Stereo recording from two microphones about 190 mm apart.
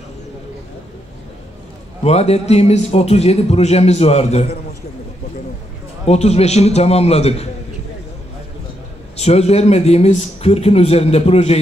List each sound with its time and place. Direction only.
2.0 s a man's voice: 35° left (ahead or behind)
6.0 s a man's voice: 35° left (ahead or behind)
9.1 s a man's voice: 35° left (ahead or behind)